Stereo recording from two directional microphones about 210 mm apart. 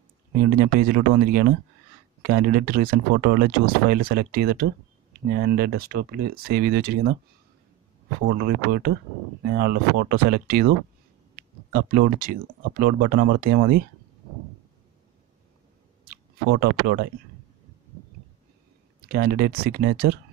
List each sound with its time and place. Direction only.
0.7 s speech: 40° right (ahead or behind)
8.3 s speech: 45° right (ahead or behind)
11.7 s speech: 40° right (ahead or behind)
16.1 s speech: 45° right (ahead or behind)
19.1 s speech: 45° right (ahead or behind)